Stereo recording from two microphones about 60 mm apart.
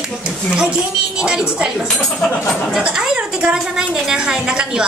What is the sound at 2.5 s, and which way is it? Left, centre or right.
Speech, centre.